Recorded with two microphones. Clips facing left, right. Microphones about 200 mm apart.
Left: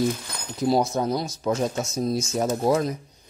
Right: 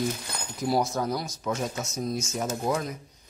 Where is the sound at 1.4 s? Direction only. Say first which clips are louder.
Left 6 dB; 35° left (ahead or behind).